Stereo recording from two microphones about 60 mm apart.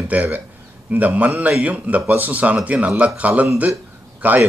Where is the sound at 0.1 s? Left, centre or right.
Right.